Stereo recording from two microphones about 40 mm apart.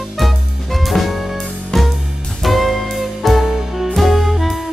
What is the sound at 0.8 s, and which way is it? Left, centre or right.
Music, centre.